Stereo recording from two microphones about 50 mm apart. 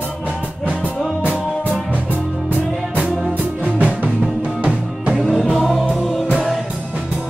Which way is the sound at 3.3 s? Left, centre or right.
Right.